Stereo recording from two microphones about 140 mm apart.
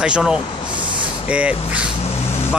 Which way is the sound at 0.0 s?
5° right (ahead or behind).